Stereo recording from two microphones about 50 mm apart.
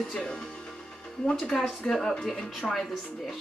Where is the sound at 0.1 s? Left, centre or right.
Centre.